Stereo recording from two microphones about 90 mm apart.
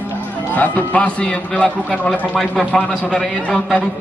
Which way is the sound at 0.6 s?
15° left (ahead or behind).